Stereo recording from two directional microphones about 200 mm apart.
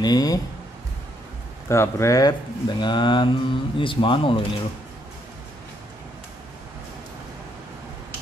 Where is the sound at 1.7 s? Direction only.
15° left (ahead or behind).